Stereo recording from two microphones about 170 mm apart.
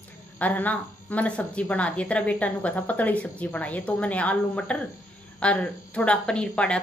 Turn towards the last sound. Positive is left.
turn(degrees=5)  # may be behind; listen again after turning